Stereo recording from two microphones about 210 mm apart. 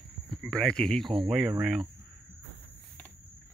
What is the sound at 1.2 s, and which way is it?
Speech, centre (ahead or behind).